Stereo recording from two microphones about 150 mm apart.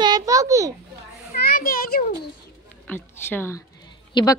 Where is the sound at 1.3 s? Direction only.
80° left.